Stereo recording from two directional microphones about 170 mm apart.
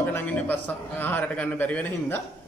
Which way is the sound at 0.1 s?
10° left (ahead or behind).